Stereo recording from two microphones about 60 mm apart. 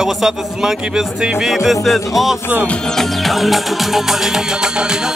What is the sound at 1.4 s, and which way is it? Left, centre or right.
Music, centre.